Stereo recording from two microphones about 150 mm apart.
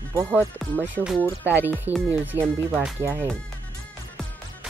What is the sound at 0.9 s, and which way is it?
Speech, 10° right (ahead or behind).